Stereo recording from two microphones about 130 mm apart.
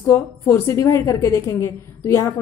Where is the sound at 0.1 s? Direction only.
20° left (ahead or behind).